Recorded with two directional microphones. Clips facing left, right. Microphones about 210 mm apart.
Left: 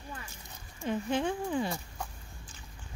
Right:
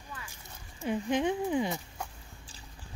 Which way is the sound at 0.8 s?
15° right (ahead or behind).